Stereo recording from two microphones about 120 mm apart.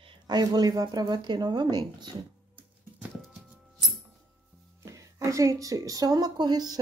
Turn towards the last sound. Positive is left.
turn(degrees=-35)  # may be behind; listen again after turning